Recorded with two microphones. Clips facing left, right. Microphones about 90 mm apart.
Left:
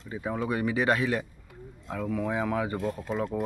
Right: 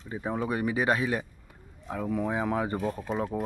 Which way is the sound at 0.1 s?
25° right (ahead or behind).